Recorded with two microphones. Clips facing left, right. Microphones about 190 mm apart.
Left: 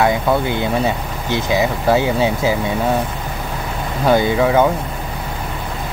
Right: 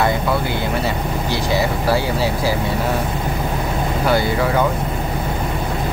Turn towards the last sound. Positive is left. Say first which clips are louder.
# left 4 dB
turn(degrees=20)  # may be behind; listen again after turning